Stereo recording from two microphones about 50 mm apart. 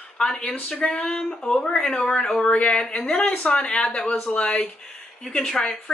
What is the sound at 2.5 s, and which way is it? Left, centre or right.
Speech, left.